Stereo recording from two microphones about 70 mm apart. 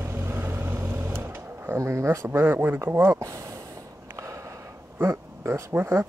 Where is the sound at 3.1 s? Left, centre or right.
Right.